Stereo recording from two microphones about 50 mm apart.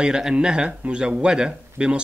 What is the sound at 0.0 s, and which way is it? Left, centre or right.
Speech, centre.